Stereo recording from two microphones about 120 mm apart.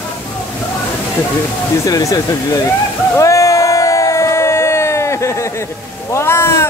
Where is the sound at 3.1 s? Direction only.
25° left (ahead or behind).